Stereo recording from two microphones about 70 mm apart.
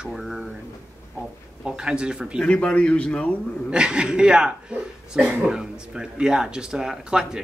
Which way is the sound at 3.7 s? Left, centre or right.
Centre.